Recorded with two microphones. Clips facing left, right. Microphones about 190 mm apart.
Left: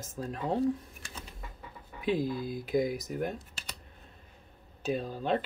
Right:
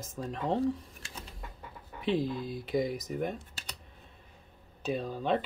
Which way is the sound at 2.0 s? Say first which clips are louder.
Even; 5° left (ahead or behind).